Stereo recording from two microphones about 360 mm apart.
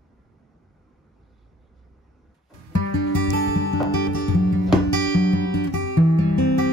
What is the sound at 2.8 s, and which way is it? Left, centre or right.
Music, left.